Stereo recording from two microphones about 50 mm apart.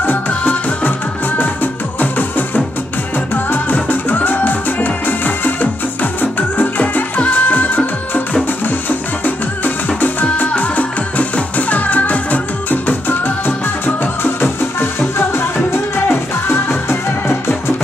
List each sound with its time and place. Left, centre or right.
0.3 s music: left